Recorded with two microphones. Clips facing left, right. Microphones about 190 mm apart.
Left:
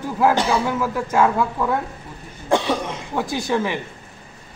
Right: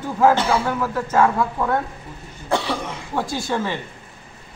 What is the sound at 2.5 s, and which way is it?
Speech, 15° left (ahead or behind).